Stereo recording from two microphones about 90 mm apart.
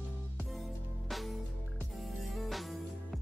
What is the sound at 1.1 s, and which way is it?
Music, centre (ahead or behind).